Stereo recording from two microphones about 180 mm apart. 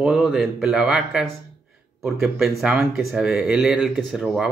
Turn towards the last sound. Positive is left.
turn(degrees=0)  # may be behind; listen again after turning